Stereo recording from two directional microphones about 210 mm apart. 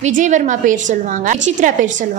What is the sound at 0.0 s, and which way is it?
A woman's voice, 35° right (ahead or behind).